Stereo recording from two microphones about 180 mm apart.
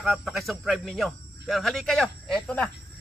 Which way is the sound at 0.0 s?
Centre (ahead or behind).